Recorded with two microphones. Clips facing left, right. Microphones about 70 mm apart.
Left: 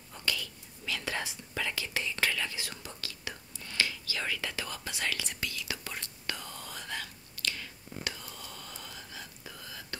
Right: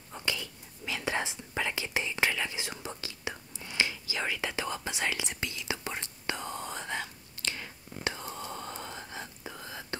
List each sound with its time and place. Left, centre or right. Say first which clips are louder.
0.1 s whispering: right 1 dB; right